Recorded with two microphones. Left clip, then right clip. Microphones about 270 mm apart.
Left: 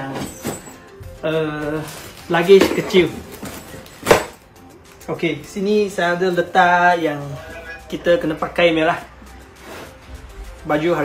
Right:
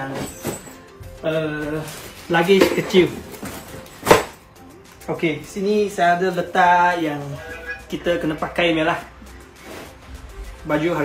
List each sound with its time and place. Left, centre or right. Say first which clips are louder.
0.1 s music: left 1 dB; centre
1.2 s speech: left 2 dB; centre
2.2 s a sound: left 3 dB; centre
5.0 s speech: even; centre
10.7 s speech: left 3 dB; centre